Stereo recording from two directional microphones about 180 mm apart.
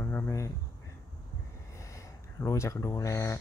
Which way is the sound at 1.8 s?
15° left (ahead or behind).